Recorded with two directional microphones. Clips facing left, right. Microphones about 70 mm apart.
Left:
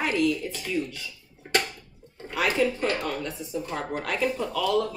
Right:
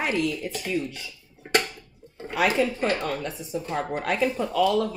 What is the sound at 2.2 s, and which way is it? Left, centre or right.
A woman's voice, right.